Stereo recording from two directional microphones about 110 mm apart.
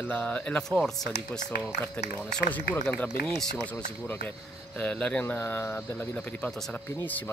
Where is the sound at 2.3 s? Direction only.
10° left (ahead or behind).